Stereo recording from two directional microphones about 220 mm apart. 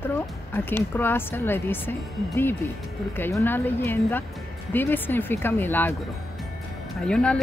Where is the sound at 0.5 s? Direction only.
10° left (ahead or behind).